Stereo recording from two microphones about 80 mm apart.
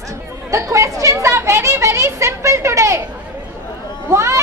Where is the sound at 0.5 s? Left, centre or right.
Right.